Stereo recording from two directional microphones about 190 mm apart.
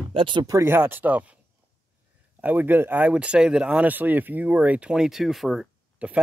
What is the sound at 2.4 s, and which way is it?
Speech, 10° right (ahead or behind).